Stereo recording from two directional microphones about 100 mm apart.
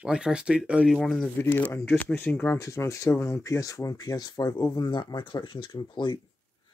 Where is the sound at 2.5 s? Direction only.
30° left (ahead or behind).